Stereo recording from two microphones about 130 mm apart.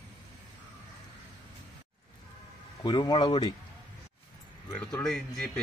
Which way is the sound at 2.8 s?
35° left (ahead or behind).